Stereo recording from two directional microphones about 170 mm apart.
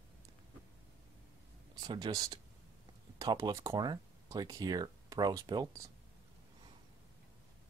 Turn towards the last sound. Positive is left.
turn(degrees=-20)  # may be behind; listen again after turning